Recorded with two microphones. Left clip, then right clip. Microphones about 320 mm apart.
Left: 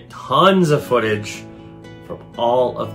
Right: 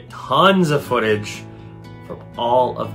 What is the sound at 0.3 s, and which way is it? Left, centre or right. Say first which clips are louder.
Speech: left 1 dB; centre.